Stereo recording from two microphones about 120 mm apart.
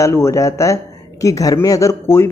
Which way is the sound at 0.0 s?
25° left (ahead or behind).